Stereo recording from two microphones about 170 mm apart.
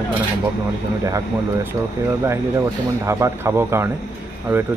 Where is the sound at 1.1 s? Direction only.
20° right (ahead or behind).